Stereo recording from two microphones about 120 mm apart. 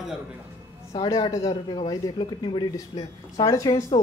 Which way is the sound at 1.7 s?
40° left (ahead or behind).